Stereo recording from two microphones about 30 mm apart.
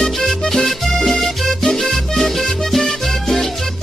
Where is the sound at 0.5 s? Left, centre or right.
Centre.